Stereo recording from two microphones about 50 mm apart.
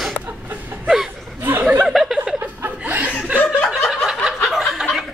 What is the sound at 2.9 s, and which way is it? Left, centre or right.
Chuckle, right.